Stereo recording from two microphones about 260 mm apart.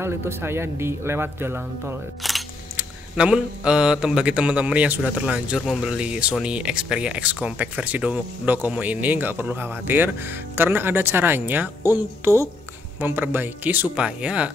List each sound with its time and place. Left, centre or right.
0.0 s speech: centre